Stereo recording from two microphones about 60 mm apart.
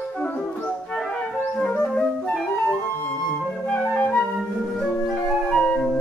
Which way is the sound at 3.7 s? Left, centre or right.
Left.